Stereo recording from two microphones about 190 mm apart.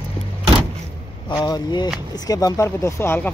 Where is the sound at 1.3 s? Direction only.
15° left (ahead or behind).